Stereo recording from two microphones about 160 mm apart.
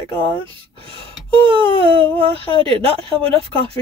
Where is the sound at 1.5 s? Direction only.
35° right (ahead or behind).